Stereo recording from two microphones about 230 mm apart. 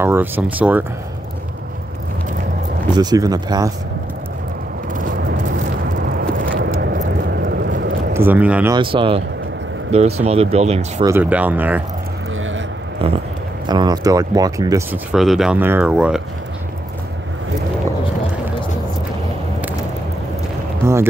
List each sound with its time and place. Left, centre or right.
0.0 s speech: centre
3.0 s speech: centre
4.9 s vehicle: right
6.0 s vehicle: right
8.1 s speech: centre
8.7 s speech: right
11.1 s speech: centre
13.0 s speech: right
15.1 s speech: centre
20.8 s a sound: centre